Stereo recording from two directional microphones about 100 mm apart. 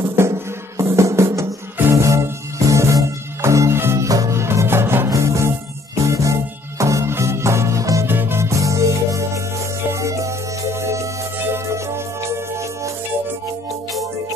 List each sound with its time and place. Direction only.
0.0 s music: 25° right (ahead or behind)